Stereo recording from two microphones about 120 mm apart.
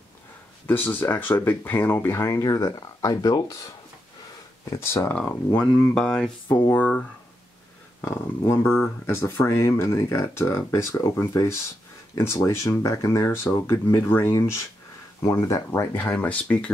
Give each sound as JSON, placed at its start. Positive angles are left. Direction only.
{"t": 0.7, "sound": "speech", "side_deg": 15}
{"t": 4.6, "sound": "speech", "side_deg": 20}
{"t": 5.1, "sound": "speech", "side_deg": 10}
{"t": 6.5, "sound": "speech", "side_deg": 15}
{"t": 8.5, "sound": "speech", "side_deg": 20}